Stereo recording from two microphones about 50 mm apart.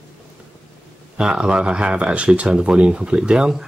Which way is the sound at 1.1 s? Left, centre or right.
Centre.